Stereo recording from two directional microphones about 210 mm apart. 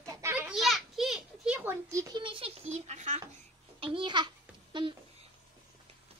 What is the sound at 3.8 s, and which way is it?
Speech, 25° right (ahead or behind).